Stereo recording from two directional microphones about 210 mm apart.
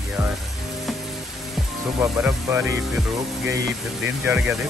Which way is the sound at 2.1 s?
5° right (ahead or behind).